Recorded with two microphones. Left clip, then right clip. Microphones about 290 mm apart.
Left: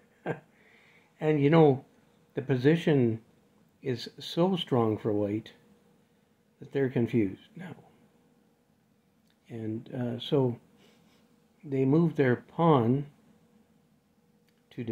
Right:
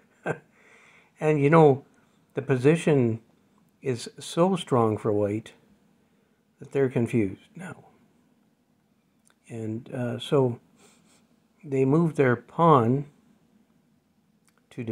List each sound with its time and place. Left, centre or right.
0.2 s a sound: centre
2.3 s speech: centre
6.6 s speech: centre
9.5 s speech: centre